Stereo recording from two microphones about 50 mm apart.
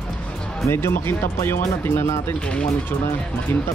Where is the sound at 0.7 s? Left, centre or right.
Left.